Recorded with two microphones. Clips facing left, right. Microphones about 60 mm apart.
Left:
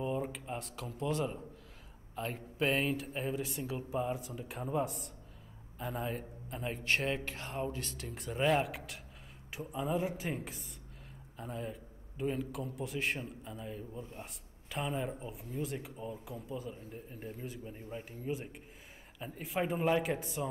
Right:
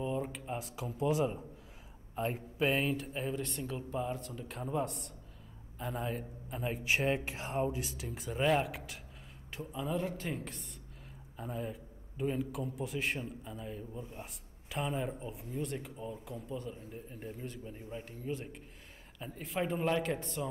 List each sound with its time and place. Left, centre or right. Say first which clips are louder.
0.0 s speech: even; centre
2.6 s a man's voice: even; centre